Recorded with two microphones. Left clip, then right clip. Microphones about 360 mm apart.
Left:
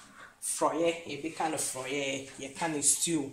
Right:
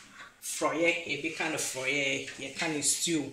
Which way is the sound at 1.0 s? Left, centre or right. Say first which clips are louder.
Right 1 dB; left.